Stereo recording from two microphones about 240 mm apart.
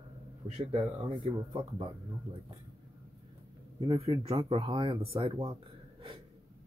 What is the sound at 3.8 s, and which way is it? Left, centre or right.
Speech, right.